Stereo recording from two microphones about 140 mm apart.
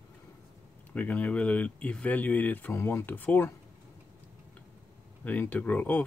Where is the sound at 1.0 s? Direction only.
10° left (ahead or behind).